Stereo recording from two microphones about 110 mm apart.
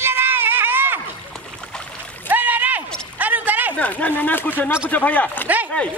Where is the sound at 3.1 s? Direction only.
15° right (ahead or behind).